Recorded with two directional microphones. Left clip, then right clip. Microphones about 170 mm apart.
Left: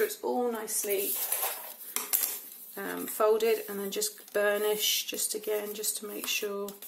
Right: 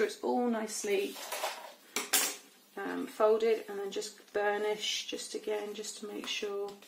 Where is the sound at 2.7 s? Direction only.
Centre (ahead or behind).